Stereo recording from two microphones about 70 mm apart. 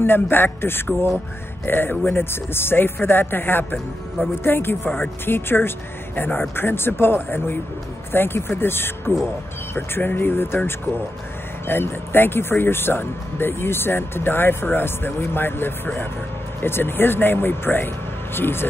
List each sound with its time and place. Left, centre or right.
0.0 s speech: left